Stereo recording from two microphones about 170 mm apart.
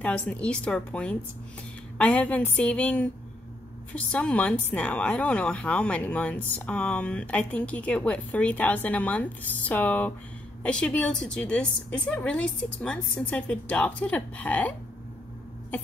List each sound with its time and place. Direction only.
0.0 s speech: 10° left (ahead or behind)